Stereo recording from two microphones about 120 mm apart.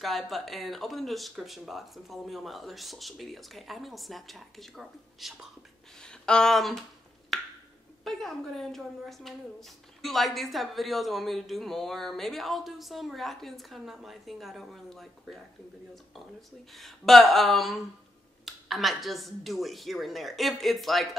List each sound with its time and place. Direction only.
0.0 s a woman's voice: centre (ahead or behind)
5.9 s a sound: 5° left (ahead or behind)
8.0 s a woman's voice: centre (ahead or behind)